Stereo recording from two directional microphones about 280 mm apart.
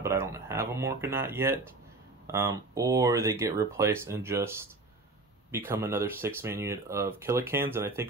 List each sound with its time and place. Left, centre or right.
0.0 s speech: centre